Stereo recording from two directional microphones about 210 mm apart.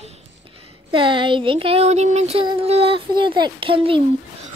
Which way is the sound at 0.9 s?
25° right (ahead or behind).